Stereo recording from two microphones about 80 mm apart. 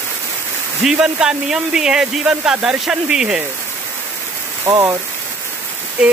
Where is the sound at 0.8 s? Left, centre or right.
Centre.